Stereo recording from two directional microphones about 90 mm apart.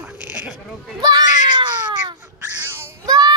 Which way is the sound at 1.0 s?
50° right (ahead or behind).